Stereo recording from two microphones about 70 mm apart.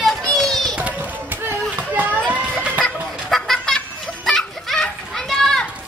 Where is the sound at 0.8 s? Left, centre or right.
Right.